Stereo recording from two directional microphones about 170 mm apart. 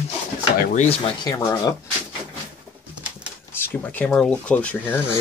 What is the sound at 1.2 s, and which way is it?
Speech, 20° left (ahead or behind).